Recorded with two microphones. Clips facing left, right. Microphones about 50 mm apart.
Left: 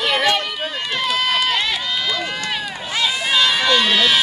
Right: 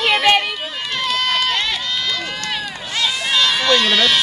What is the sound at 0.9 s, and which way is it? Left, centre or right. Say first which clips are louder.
Run: even; centre.